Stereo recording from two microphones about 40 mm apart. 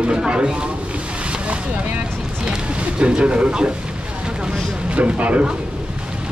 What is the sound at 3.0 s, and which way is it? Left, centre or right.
Speech, right.